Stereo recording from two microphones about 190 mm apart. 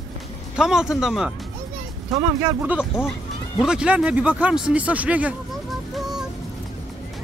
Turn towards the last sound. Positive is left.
turn(degrees=0)  # may be behind; listen again after turning